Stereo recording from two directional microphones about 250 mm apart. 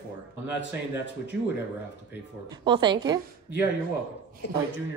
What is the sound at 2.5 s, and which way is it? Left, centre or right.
Speech, centre.